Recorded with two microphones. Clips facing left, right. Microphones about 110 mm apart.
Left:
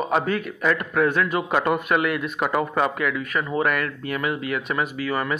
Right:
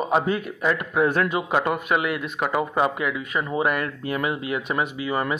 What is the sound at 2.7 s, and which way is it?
Speech, 15° right (ahead or behind).